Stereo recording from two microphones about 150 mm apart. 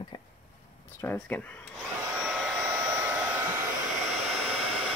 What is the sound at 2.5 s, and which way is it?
Hair dryer, 15° right (ahead or behind).